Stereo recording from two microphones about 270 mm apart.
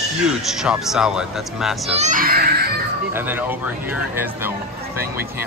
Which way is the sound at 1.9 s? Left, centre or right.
Right.